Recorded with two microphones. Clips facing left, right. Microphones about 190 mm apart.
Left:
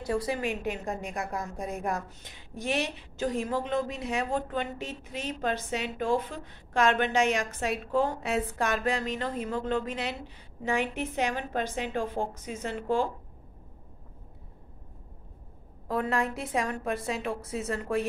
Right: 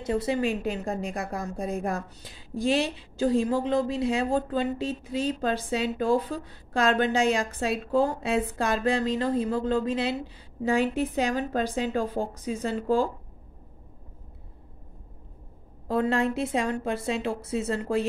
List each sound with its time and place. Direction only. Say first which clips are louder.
0.0 s a woman's voice: right 4 dB; 25° right (ahead or behind)
15.9 s a woman's voice: right 4 dB; 25° right (ahead or behind)